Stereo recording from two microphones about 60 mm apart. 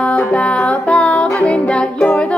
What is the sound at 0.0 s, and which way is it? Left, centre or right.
Music, left.